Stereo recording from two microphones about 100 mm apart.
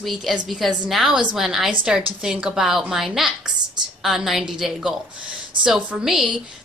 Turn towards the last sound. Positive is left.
turn(degrees=-5)  # may be behind; listen again after turning